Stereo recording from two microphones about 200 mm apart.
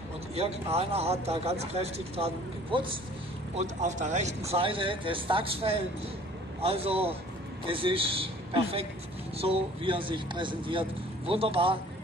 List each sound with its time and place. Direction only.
0.4 s speech: 30° right (ahead or behind)